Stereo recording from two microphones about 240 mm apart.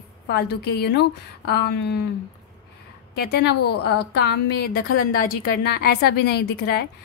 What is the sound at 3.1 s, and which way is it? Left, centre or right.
A woman's voice, left.